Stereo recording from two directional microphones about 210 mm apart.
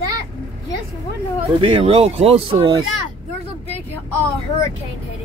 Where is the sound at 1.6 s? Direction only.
25° right (ahead or behind).